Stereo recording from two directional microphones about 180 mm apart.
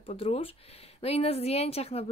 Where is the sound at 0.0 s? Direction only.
30° left (ahead or behind).